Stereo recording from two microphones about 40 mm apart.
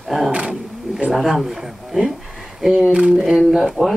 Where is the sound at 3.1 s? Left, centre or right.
Centre.